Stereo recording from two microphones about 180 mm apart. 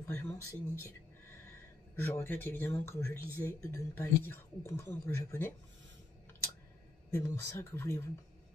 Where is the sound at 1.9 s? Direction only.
10° left (ahead or behind).